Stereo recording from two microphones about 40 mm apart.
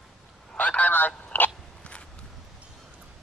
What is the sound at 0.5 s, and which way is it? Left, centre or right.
Speech, left.